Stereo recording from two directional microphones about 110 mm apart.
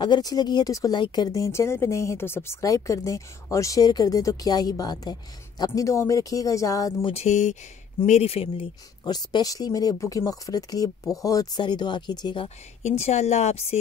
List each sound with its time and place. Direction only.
0.0 s speech: 40° left (ahead or behind)
7.2 s a woman's voice: 90° left
8.0 s speech: 70° left (ahead or behind)
9.0 s speech: 40° left (ahead or behind)
12.8 s a woman's voice: 85° left